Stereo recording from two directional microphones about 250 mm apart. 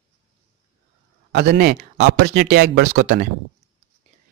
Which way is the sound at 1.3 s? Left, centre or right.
Right.